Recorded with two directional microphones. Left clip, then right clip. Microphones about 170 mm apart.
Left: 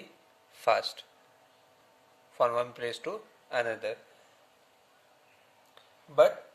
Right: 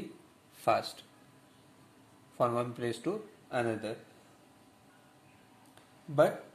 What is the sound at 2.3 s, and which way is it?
Speech, 35° left (ahead or behind).